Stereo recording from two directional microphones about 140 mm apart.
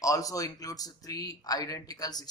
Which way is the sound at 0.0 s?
25° left (ahead or behind).